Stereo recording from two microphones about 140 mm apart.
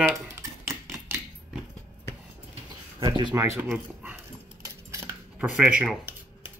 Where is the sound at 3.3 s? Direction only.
20° right (ahead or behind).